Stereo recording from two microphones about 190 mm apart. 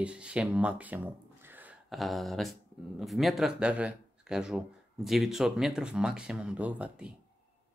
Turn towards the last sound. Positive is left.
turn(degrees=-5)  # may be behind; listen again after turning